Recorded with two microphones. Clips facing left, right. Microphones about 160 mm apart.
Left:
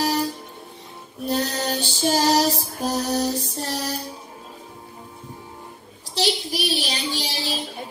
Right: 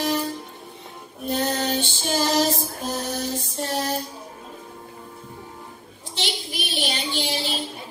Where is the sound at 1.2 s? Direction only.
35° left (ahead or behind).